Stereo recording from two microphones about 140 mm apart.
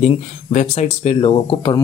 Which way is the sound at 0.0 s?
55° left (ahead or behind).